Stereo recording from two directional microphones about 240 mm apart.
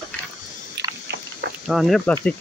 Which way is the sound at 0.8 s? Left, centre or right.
Right.